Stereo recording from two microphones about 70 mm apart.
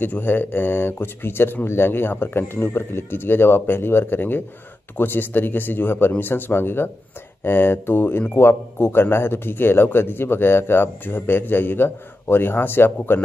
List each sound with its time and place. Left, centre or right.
0.0 s a man's voice: left